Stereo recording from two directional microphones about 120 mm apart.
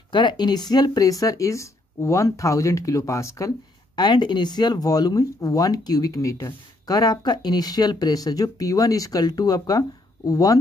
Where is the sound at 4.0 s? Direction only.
35° left (ahead or behind).